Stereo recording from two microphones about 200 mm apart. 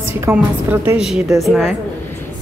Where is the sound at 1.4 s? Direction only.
Centre (ahead or behind).